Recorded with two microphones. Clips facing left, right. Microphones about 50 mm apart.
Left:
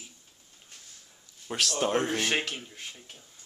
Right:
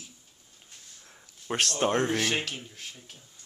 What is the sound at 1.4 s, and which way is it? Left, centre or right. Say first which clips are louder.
Speech: right 2 dB; right.